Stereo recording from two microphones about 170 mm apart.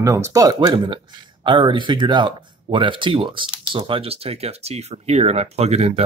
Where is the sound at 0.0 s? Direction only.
20° right (ahead or behind).